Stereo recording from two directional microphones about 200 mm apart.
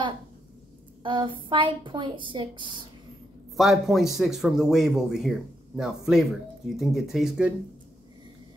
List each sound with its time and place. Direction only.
1.0 s speech: 25° right (ahead or behind)
3.5 s a man's voice: centre (ahead or behind)